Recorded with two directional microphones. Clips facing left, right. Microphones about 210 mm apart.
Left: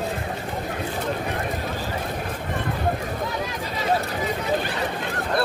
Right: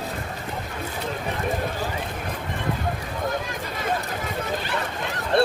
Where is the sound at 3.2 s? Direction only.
50° right (ahead or behind).